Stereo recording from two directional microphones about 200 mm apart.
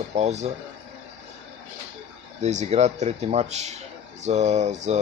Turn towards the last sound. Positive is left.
turn(degrees=-35)  # may be behind; listen again after turning